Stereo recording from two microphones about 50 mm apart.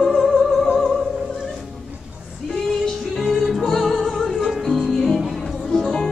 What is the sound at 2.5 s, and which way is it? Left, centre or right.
Music, centre.